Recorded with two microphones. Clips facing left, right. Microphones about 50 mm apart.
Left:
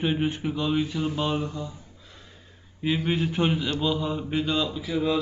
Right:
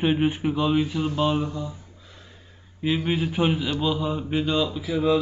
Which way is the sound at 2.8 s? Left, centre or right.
Centre.